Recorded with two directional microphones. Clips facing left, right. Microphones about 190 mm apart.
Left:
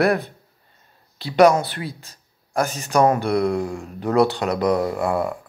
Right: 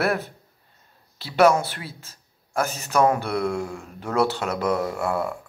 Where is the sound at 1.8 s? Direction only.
15° left (ahead or behind).